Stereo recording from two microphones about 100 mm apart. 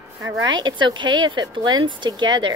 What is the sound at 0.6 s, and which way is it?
Speech, 50° right (ahead or behind).